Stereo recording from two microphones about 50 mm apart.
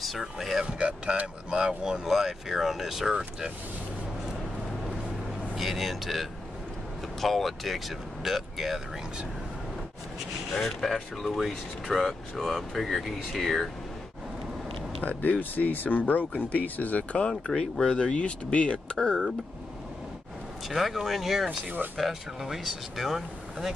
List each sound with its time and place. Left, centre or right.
0.0 s speech: centre
0.7 s speech: right
5.6 s speech: centre
10.6 s speech: centre
15.0 s speech: left
17.6 s speech: centre
20.6 s speech: centre